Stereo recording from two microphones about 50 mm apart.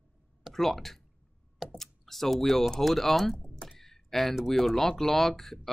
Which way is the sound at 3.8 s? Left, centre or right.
Centre.